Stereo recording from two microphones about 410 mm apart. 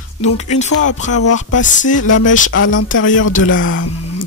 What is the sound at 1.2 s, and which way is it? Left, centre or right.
Speech, left.